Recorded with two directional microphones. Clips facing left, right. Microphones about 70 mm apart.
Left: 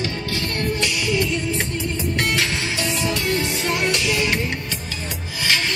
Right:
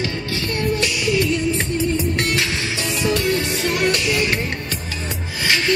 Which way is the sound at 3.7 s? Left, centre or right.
Right.